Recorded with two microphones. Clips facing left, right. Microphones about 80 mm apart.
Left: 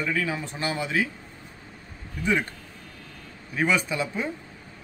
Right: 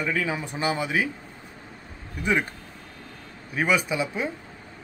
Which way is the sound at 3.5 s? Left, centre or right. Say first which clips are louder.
Right 1 dB; centre.